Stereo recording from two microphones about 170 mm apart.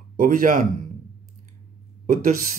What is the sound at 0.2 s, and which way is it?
Speech, 50° right (ahead or behind).